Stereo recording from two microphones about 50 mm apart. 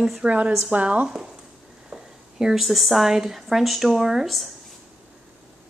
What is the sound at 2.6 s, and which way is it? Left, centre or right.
Speech, centre.